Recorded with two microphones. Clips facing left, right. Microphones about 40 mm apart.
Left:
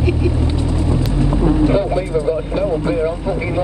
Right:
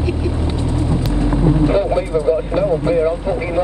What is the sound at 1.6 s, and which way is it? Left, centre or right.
Vehicle, centre.